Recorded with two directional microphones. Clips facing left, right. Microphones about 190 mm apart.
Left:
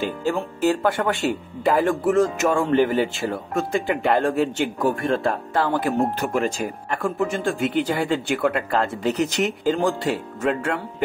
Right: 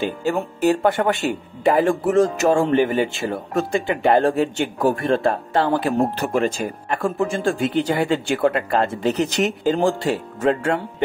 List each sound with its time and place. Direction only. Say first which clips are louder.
0.2 s speech: right 2 dB; 15° right (ahead or behind)